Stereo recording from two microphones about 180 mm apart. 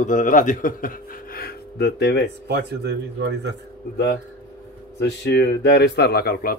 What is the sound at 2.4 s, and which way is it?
Speech, 65° right (ahead or behind).